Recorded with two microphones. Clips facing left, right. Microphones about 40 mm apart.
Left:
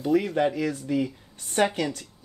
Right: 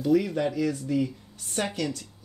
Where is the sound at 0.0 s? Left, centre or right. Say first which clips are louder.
Left 1 dB; left.